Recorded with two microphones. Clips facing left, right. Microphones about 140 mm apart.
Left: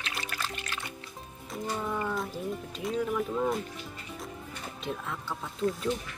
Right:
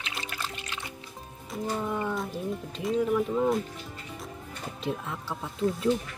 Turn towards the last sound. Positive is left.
turn(degrees=0)  # may be behind; listen again after turning